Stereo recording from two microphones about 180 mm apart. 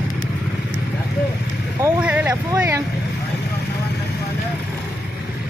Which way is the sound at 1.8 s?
10° right (ahead or behind).